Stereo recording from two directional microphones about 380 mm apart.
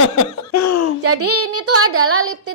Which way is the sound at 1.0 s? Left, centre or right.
Right.